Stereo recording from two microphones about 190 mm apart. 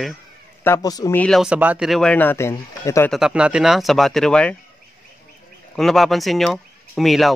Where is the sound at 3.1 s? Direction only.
5° right (ahead or behind).